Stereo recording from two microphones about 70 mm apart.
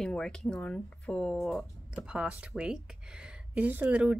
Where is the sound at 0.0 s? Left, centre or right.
Centre.